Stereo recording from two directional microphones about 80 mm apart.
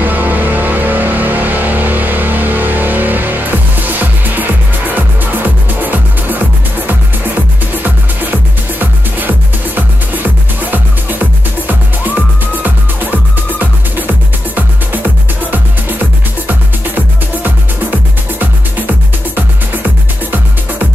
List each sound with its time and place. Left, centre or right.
0.0 s music: right
7.8 s music: right
16.4 s music: right
19.3 s music: right